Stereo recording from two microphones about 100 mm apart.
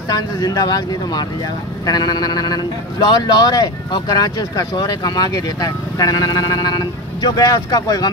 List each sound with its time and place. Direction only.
0.1 s a man's voice: 40° left (ahead or behind)